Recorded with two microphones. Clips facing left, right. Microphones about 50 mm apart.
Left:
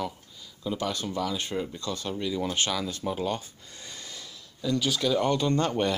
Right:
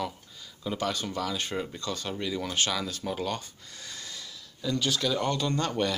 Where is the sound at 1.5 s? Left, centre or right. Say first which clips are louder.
Left 1 dB; centre.